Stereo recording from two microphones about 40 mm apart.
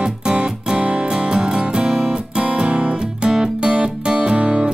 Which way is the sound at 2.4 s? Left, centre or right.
Right.